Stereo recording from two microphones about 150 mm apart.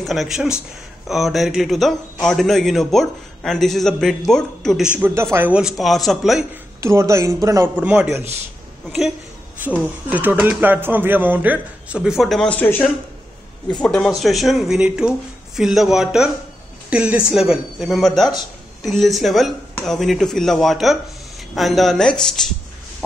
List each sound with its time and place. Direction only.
0.0 s speech: centre (ahead or behind)
4.9 s speech: 15° right (ahead or behind)
6.8 s speech: 20° right (ahead or behind)
7.8 s speech: 10° right (ahead or behind)
9.6 s speech: 10° right (ahead or behind); by 12.9 s 10° left (ahead or behind)
13.8 s speech: centre (ahead or behind)